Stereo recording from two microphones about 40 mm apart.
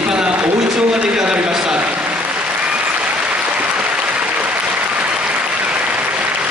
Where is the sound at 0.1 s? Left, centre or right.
Right.